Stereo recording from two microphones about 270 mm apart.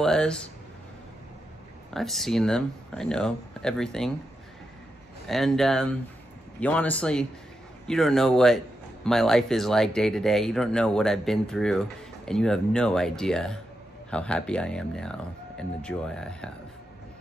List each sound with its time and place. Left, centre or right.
0.0 s speech: centre
2.0 s speech: centre
5.2 s speech: centre